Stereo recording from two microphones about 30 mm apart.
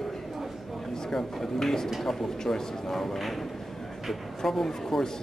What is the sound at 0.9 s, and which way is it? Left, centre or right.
Speech, centre.